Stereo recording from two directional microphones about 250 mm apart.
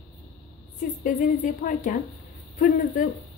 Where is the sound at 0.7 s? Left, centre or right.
Left.